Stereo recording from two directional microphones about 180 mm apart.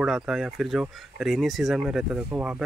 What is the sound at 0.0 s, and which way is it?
Speech, centre (ahead or behind).